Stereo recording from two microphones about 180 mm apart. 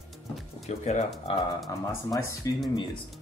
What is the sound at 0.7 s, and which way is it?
Speech, 40° left (ahead or behind).